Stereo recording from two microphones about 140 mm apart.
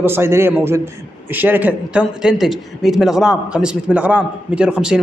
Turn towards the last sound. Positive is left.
turn(degrees=-5)  # may be behind; listen again after turning